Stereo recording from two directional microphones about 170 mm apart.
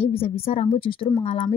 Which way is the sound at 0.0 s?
35° left (ahead or behind).